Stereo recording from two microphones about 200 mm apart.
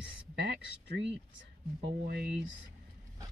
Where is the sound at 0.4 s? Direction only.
60° right (ahead or behind).